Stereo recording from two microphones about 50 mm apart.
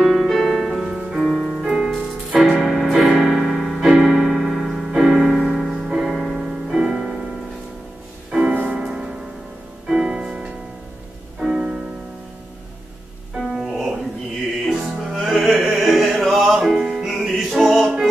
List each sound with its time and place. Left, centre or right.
0.0 s music: centre
1.2 s music: centre
1.6 s music: centre
1.9 s music: centre
2.6 s keyboard: centre
3.9 s keyboard: centre
4.2 s keyboard: centre
5.9 s music: centre
8.3 s music: centre
13.4 s music: centre
15.1 s music: centre
17.1 s music: centre